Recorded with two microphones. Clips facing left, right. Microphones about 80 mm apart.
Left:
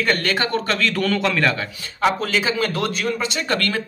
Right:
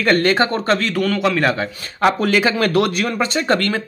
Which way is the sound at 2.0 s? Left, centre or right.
Right.